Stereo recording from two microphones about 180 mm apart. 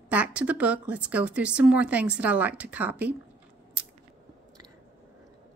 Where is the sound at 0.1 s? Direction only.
5° right (ahead or behind).